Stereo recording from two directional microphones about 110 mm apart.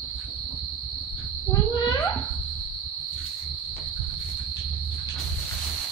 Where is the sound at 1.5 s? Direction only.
35° left (ahead or behind).